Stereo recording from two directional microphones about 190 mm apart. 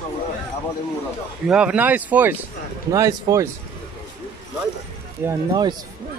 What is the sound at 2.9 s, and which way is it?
Speech, 20° right (ahead or behind).